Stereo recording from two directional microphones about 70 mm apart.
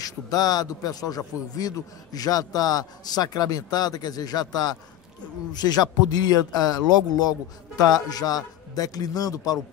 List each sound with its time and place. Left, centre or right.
0.0 s speech: left